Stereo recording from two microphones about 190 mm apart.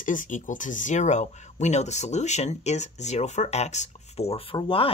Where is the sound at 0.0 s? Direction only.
45° left (ahead or behind).